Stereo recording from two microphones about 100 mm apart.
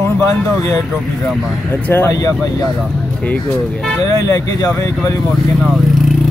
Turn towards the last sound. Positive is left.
turn(degrees=35)  # may be behind; listen again after turning